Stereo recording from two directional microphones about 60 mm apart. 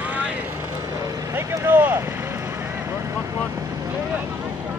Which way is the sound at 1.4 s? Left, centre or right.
Right.